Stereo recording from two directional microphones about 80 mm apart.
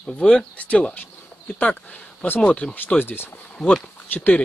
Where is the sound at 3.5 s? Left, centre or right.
Centre.